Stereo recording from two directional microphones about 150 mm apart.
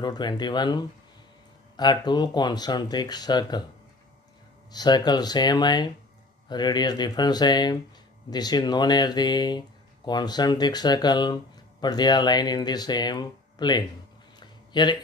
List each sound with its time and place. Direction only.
0.0 s speech: 30° left (ahead or behind)
4.7 s speech: 25° left (ahead or behind)
14.4 s a sound: 30° left (ahead or behind)